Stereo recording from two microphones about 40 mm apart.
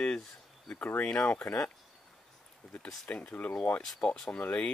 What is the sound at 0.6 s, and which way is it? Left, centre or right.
Speech, left.